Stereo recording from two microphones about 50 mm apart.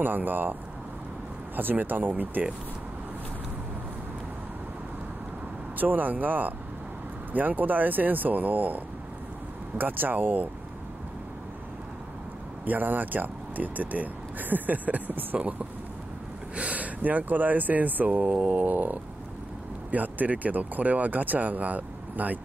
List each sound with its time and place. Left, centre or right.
0.0 s speech: right
1.6 s speech: right
5.8 s speech: right
12.6 s speech: right
16.5 s speech: right
18.2 s mantra: right
19.9 s speech: right